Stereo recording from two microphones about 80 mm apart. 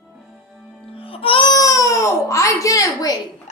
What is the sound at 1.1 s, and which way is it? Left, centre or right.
Music, left.